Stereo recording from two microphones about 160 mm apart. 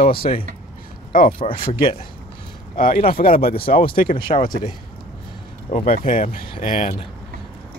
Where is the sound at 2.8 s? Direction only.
65° left (ahead or behind).